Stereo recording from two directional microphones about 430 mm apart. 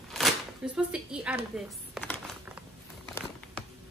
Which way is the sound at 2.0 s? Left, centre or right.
Centre.